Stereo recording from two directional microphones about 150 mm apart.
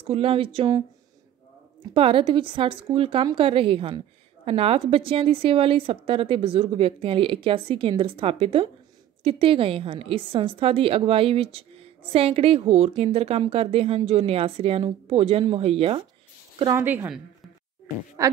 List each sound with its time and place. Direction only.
0.0 s a woman's voice: 40° right (ahead or behind)
2.0 s a woman's voice: 35° right (ahead or behind)
16.7 s a woman's voice: 15° right (ahead or behind)
18.2 s a woman's voice: 20° right (ahead or behind)